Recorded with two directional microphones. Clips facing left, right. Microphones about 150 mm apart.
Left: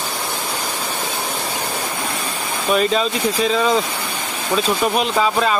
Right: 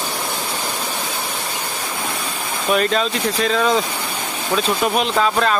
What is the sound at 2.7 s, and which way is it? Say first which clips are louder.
Speech: left 1 dB; centre (ahead or behind).